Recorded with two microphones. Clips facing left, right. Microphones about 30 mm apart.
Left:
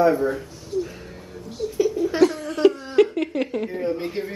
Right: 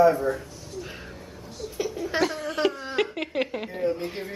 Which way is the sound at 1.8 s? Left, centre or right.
Centre.